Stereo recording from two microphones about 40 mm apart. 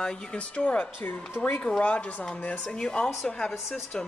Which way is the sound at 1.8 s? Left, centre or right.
Left.